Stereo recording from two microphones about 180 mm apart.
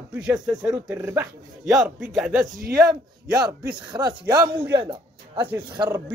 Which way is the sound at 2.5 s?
55° right (ahead or behind).